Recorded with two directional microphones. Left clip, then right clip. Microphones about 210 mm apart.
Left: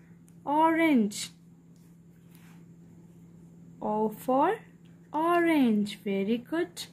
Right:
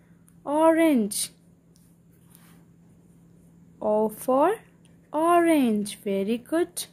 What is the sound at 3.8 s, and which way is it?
Speech, 35° right (ahead or behind).